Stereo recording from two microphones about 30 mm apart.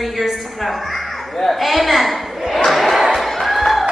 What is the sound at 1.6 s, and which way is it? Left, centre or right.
Speech, centre.